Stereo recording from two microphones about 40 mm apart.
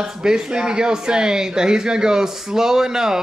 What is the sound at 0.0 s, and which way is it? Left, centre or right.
Speech, centre.